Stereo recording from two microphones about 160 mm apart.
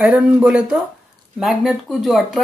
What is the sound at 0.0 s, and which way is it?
Speech, 10° right (ahead or behind).